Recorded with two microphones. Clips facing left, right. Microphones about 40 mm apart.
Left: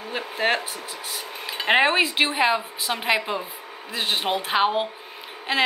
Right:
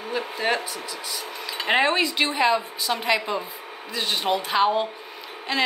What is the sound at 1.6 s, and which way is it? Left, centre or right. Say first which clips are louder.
A woman's voice: left 2 dB; centre.